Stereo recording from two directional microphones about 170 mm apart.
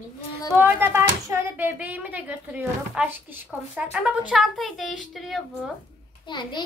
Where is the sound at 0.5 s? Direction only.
10° right (ahead or behind).